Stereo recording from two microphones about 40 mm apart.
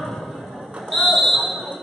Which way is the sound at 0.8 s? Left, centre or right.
Centre.